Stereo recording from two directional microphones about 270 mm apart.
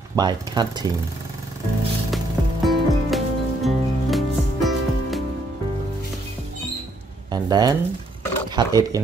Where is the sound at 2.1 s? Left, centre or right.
Centre.